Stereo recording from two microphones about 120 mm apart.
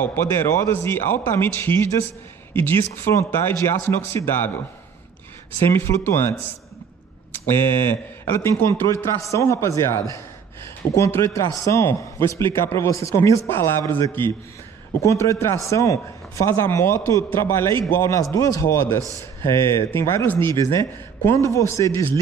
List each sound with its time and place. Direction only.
0.0 s speech: 15° left (ahead or behind)
5.6 s speech: 20° left (ahead or behind)
7.5 s speech: 20° left (ahead or behind)